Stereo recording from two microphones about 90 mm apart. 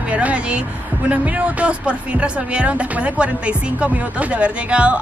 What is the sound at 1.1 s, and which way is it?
Speech, 15° right (ahead or behind).